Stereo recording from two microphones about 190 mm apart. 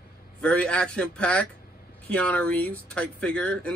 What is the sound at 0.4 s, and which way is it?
Speech, 5° left (ahead or behind).